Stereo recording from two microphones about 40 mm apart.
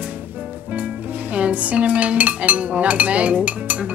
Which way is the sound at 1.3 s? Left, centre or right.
Right.